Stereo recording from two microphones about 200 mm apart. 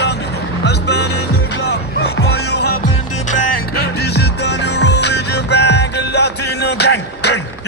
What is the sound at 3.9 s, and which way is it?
Music, 55° left (ahead or behind).